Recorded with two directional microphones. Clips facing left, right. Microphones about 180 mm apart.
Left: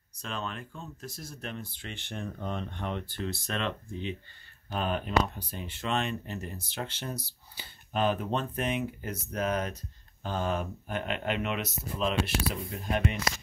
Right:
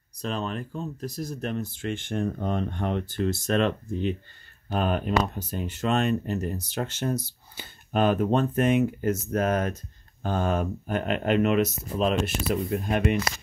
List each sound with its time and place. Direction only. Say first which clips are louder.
0.2 s speech: right 7 dB; 35° right (ahead or behind)